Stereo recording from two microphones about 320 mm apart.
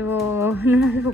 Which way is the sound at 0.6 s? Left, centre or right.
Left.